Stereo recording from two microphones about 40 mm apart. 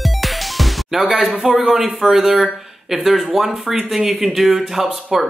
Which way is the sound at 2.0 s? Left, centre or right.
Centre.